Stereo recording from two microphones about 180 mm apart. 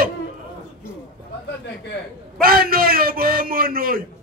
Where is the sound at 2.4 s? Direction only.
55° right (ahead or behind).